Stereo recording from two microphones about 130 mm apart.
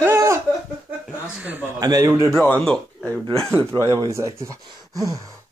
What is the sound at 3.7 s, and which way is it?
Speech, 25° right (ahead or behind).